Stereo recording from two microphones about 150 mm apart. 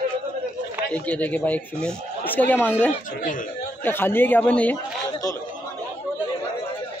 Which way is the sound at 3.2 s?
65° left (ahead or behind).